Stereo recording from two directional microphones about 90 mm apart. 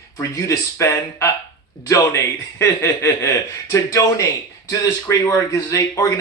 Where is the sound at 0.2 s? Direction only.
40° left (ahead or behind).